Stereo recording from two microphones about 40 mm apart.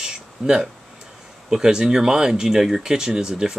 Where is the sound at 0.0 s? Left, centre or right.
Centre.